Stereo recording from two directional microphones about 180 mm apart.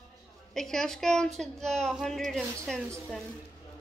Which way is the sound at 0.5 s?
Centre (ahead or behind).